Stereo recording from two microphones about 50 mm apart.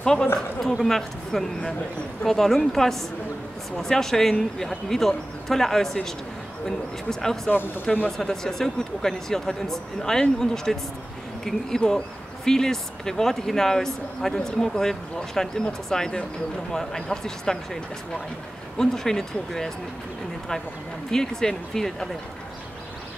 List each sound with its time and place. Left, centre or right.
0.0 s a woman's voice: centre
7.1 s speech: centre
11.8 s speech: left
12.4 s speech: centre
21.1 s speech: centre